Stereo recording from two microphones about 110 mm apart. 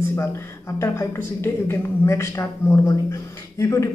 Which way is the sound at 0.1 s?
25° left (ahead or behind).